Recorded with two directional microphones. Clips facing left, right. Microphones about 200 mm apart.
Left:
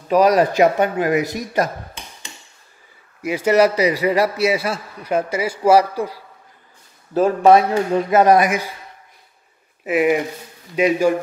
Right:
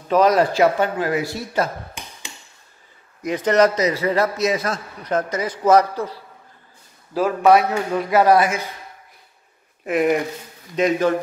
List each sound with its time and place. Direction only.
0.1 s a man's voice: 15° left (ahead or behind)
3.2 s a man's voice: 10° left (ahead or behind)
7.2 s speech: 25° left (ahead or behind)
9.8 s a man's voice: 5° left (ahead or behind)